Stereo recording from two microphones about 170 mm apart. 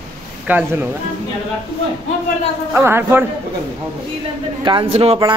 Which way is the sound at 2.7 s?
15° right (ahead or behind).